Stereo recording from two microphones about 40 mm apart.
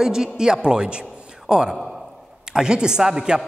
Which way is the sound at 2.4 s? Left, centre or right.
Centre.